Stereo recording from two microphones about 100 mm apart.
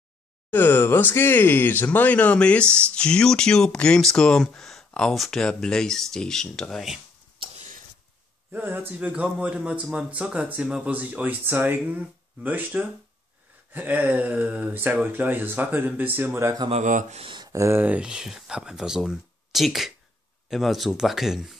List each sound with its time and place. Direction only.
0.5 s speech: 20° left (ahead or behind); by 7.0 s centre (ahead or behind)
8.5 s speech: 20° right (ahead or behind)
16.6 s speech: 80° right
17.5 s speech: 30° right (ahead or behind)
17.8 s speech: 10° right (ahead or behind)